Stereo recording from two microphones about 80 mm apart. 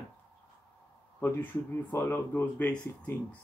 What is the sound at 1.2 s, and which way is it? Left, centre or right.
Speech, left.